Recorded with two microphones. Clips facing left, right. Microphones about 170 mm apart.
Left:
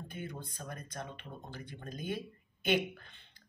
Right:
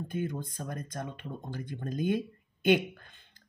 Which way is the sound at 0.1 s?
45° right (ahead or behind).